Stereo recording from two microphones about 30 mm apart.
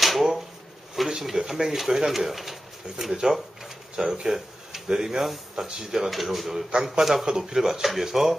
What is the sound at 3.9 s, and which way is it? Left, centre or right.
Speech, right.